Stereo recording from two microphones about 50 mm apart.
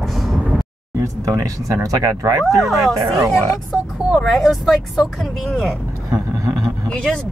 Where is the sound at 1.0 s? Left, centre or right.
Right.